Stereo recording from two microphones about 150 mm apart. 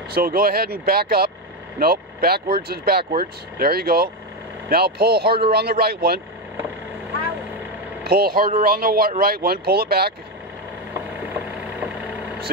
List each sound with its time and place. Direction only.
0.1 s speech: 80° right
8.0 s speech: 90° right